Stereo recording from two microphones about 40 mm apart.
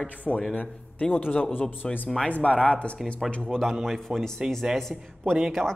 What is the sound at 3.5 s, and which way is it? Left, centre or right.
A woman's voice, centre.